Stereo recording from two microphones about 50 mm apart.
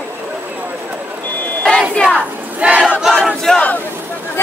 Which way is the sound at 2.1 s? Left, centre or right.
Right.